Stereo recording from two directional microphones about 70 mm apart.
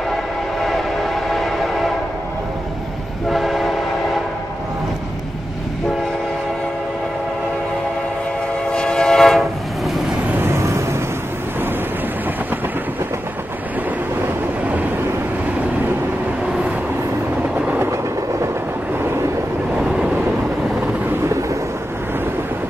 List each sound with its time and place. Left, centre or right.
0.6 s train: centre
3.3 s train: centre
8.7 s train: centre
10.2 s vehicle: right
10.5 s vehicle: right
14.2 s vehicle: right
19.8 s vehicle: centre
21.2 s thunder: right